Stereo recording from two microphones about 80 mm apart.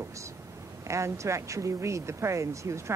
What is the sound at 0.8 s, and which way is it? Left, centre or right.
A man's voice, right.